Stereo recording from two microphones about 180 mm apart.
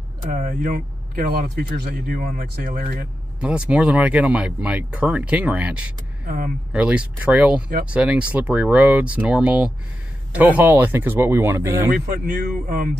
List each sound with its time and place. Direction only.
0.3 s speech: 45° right (ahead or behind)
3.3 s speech: 5° right (ahead or behind)
6.2 s speech: 55° right (ahead or behind)
6.7 s speech: 5° right (ahead or behind)
12.3 s speech: 50° right (ahead or behind)